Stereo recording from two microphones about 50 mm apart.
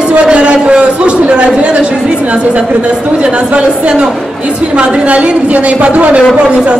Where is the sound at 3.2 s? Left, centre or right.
Right.